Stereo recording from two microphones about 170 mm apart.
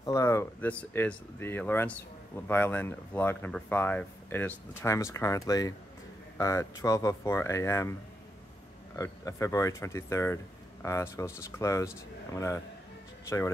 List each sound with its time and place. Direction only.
0.0 s speech: 20° left (ahead or behind)
8.9 s speech: 20° left (ahead or behind)